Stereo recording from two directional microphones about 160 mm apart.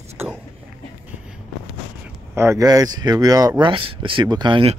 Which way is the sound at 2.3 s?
15° right (ahead or behind).